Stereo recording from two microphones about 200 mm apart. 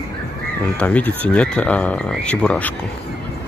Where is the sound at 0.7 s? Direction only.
5° left (ahead or behind).